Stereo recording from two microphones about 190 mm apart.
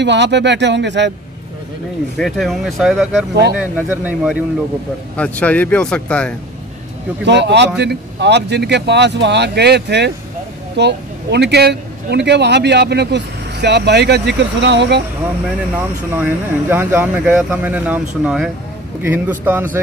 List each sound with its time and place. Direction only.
0.0 s speech: 65° right (ahead or behind)
2.1 s speech: centre (ahead or behind)
5.1 s speech: 5° left (ahead or behind)
7.2 s speech: 65° right (ahead or behind)
16.2 s speech: 10° right (ahead or behind)